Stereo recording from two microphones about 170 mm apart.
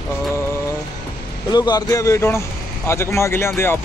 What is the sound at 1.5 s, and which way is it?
Speech, 25° left (ahead or behind).